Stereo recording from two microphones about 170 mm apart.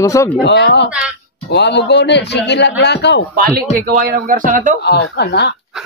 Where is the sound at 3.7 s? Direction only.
55° right (ahead or behind).